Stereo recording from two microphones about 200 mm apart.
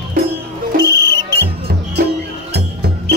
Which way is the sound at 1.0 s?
55° left (ahead or behind).